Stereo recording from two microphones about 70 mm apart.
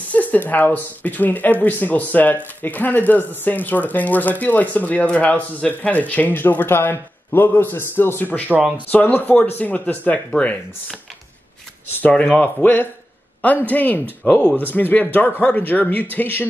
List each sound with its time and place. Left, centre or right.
0.1 s speech: left
8.5 s speech: centre
8.9 s speech: left
12.1 s speech: centre
12.6 s a man's voice: left